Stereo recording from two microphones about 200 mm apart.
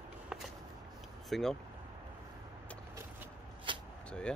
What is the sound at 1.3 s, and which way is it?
Speech, centre (ahead or behind).